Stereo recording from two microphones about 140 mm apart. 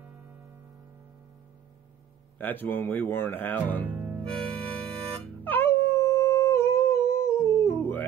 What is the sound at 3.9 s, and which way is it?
Music, 10° right (ahead or behind).